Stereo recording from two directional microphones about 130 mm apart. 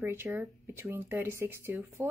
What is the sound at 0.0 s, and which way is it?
A woman's voice, 20° right (ahead or behind).